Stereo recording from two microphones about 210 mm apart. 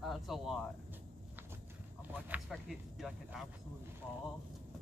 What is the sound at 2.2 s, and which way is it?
Speech, 5° right (ahead or behind).